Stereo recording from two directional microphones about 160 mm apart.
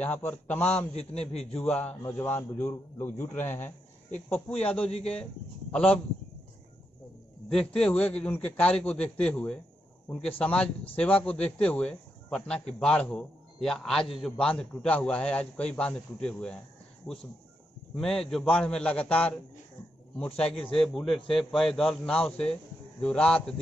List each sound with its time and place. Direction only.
0.0 s speech: 10° left (ahead or behind)
0.9 s a man's voice: 40° left (ahead or behind)
1.6 s a man's voice: 10° left (ahead or behind)
7.4 s a man's voice: 5° left (ahead or behind)